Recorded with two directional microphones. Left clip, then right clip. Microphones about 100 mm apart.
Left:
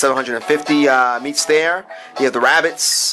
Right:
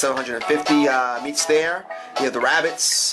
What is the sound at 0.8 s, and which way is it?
Speech, 60° left (ahead or behind).